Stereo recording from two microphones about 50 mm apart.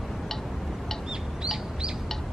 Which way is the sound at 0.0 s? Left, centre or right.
Centre.